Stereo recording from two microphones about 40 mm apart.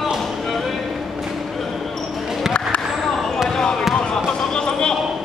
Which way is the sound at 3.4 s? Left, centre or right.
Centre.